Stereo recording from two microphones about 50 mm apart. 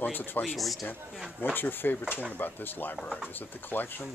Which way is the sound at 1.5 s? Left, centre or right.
Left.